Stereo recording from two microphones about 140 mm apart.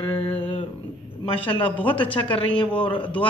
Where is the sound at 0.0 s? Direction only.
40° left (ahead or behind).